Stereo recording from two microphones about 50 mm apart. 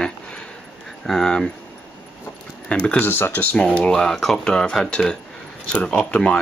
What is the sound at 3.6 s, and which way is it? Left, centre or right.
Speech, centre.